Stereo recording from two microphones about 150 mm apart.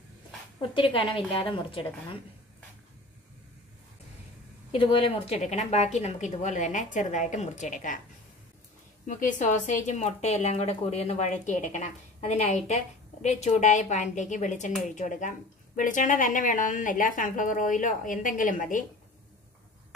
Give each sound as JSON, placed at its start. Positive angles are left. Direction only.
{"t": 0.6, "sound": "a woman's voice", "side_deg": 35}
{"t": 4.7, "sound": "speech", "side_deg": 40}
{"t": 9.0, "sound": "speech", "side_deg": 55}